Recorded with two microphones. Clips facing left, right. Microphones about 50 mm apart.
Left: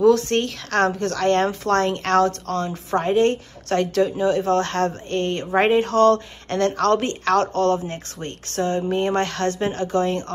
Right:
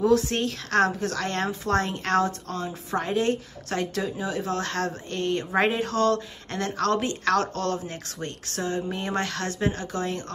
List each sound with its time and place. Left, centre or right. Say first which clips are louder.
0.0 s a woman's voice: left 5 dB; left
1.5 s a woman's voice: left 5 dB; left